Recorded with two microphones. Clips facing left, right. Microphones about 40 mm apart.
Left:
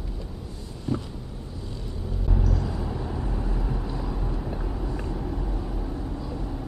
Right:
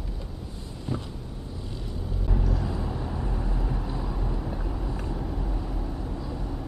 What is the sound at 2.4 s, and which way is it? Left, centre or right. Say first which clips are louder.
Vehicle: left 1 dB; centre.